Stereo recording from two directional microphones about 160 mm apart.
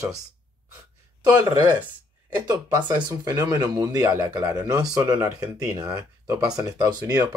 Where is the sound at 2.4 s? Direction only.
20° right (ahead or behind).